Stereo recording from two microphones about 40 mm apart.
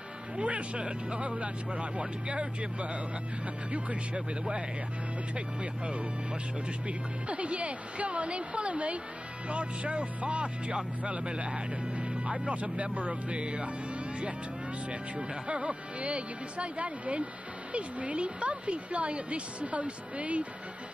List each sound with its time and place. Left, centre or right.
0.4 s speech: right
14.9 s speech: right